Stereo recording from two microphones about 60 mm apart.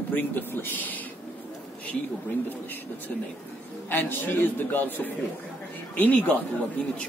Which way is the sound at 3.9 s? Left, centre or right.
Left.